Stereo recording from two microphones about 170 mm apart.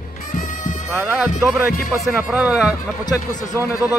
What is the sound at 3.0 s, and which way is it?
Speech, 20° left (ahead or behind).